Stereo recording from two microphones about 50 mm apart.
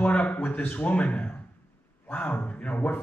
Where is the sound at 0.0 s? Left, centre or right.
Left.